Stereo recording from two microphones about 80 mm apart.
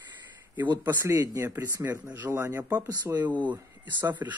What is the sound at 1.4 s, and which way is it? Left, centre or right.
Speech, right.